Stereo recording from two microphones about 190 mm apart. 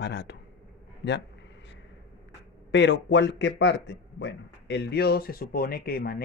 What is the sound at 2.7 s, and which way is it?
Speech, 70° left (ahead or behind).